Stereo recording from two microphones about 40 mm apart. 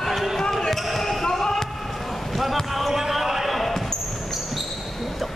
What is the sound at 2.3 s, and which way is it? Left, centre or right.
Basketball bounce, centre.